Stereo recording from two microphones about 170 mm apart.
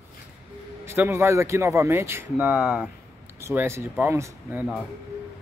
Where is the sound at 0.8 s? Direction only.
15° right (ahead or behind).